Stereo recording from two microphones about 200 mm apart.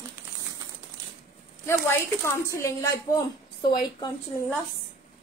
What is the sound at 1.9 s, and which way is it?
A woman's voice, 15° left (ahead or behind).